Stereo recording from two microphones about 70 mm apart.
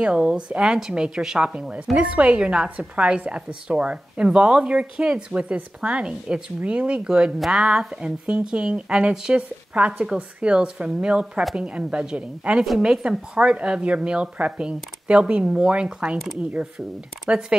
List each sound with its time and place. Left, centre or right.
0.0 s a woman's voice: centre
17.3 s a woman's voice: centre